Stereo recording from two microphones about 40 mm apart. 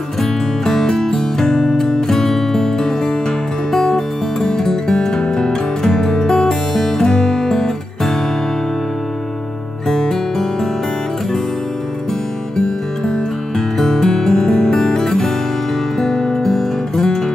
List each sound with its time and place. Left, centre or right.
0.2 s music: centre
9.8 s music: centre
12.5 s music: centre